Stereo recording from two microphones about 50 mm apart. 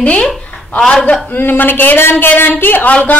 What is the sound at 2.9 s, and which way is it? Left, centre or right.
Speech, left.